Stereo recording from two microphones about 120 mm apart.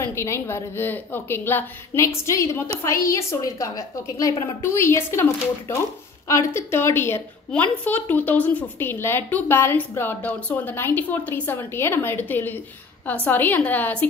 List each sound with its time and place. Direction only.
0.0 s a woman's voice: 20° left (ahead or behind)